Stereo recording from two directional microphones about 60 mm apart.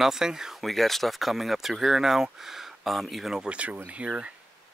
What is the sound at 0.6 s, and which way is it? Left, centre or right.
Speech, centre.